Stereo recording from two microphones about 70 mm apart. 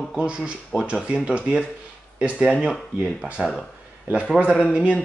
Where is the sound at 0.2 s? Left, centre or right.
Centre.